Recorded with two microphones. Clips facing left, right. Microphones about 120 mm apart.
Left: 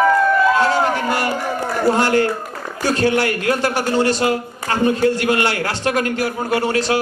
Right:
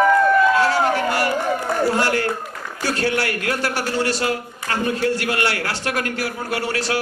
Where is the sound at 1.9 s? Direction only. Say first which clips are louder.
Left 8 dB; 20° left (ahead or behind).